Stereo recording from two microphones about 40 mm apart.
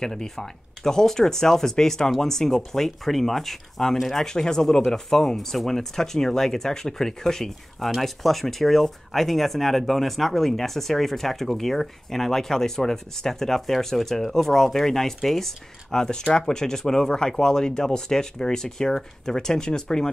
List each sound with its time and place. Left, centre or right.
0.0 s speech: centre